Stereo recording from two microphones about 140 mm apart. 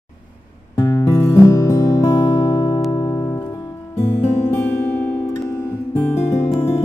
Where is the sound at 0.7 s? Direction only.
25° left (ahead or behind).